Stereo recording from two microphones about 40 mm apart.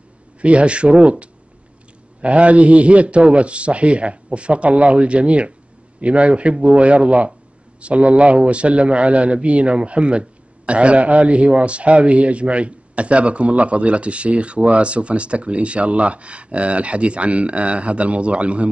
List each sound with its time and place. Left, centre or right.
0.4 s a man's voice: right